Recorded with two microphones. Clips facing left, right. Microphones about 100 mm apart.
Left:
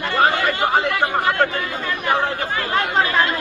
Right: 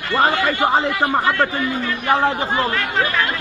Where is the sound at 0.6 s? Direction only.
25° right (ahead or behind).